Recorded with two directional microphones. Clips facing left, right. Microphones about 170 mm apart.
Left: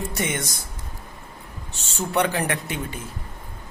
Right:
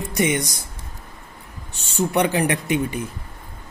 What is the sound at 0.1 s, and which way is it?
Speech, 15° right (ahead or behind).